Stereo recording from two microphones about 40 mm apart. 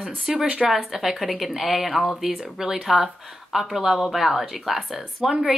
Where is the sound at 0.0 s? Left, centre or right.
Centre.